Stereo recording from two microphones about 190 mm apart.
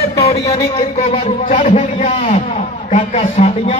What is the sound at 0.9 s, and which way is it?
A man's voice, 35° left (ahead or behind).